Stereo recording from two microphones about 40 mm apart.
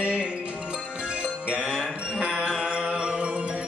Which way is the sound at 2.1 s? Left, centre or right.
Right.